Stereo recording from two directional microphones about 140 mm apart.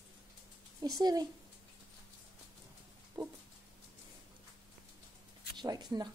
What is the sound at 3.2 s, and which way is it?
Speech, 30° right (ahead or behind).